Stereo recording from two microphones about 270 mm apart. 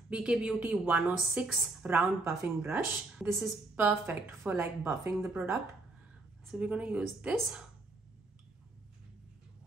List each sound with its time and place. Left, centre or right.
0.1 s a woman's voice: centre